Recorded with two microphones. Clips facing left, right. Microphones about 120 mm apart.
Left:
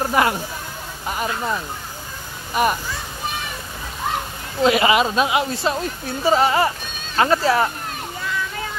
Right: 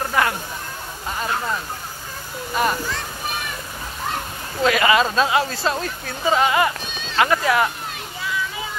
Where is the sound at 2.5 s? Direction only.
10° left (ahead or behind).